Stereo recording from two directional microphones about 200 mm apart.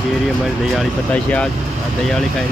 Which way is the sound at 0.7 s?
5° left (ahead or behind).